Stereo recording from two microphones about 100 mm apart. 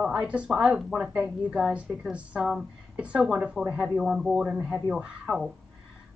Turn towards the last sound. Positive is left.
turn(degrees=-10)  # may be behind; listen again after turning